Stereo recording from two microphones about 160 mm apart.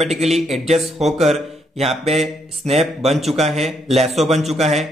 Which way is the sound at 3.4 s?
40° right (ahead or behind).